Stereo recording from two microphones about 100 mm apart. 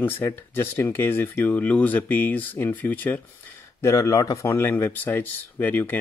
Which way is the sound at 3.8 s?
30° left (ahead or behind).